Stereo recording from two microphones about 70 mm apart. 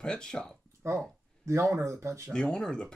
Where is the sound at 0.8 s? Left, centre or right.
Right.